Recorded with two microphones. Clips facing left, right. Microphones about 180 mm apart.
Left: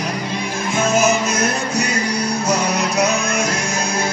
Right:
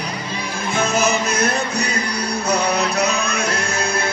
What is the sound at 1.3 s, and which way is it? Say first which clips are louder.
Music: left 1 dB; 60° right (ahead or behind).